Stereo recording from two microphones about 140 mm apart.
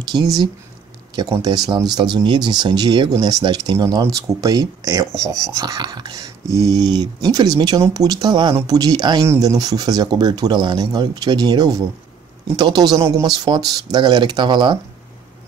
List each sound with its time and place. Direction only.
0.2 s speech: 25° right (ahead or behind)